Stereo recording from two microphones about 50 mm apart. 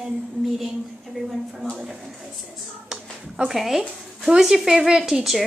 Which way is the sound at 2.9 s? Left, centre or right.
Centre.